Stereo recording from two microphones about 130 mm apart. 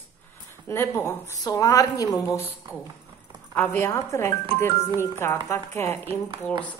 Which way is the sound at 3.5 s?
15° left (ahead or behind).